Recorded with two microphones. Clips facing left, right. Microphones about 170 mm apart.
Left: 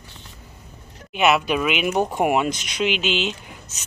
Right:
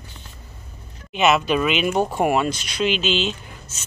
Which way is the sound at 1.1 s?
10° left (ahead or behind).